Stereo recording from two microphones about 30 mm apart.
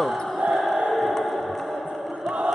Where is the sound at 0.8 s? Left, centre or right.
Centre.